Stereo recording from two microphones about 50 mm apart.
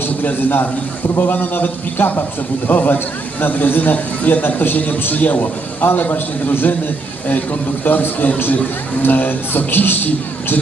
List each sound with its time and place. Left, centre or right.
0.2 s a man's voice: left